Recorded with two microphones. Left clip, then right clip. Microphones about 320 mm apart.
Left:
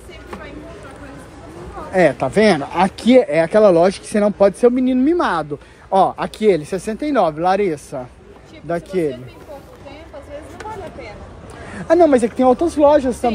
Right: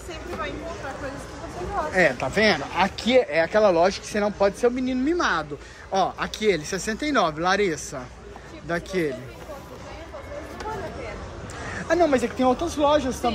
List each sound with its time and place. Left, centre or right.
2.0 s speech: centre
11.7 s speech: centre